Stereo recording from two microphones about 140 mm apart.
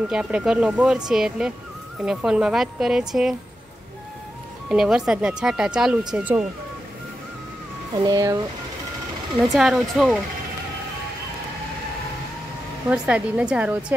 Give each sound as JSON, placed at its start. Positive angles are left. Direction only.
{"t": 0.1, "sound": "speech", "side_deg": -5}
{"t": 4.6, "sound": "speech", "side_deg": -5}
{"t": 7.9, "sound": "speech", "side_deg": -25}
{"t": 9.5, "sound": "speech", "side_deg": 0}
{"t": 12.9, "sound": "speech", "side_deg": -5}